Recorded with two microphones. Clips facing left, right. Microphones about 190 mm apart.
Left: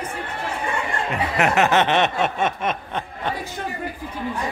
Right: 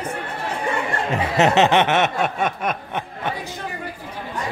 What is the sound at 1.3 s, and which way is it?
Speech, 25° right (ahead or behind).